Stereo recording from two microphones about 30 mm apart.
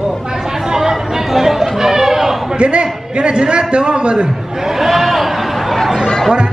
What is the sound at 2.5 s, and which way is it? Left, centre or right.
A man's voice, right.